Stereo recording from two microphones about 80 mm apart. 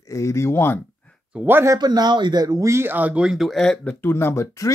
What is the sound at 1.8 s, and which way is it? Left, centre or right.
Speech, right.